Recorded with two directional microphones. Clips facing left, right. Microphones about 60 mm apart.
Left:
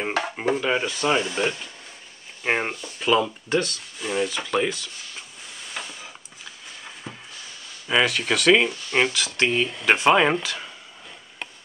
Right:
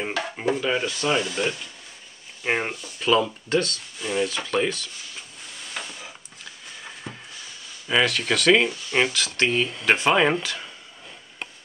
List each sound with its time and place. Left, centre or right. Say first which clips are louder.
0.4 s speech: even; centre
5.7 s a sound: even; centre
7.9 s speech: even; centre